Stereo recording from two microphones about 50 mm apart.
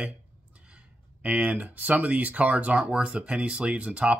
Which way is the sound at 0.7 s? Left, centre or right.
Right.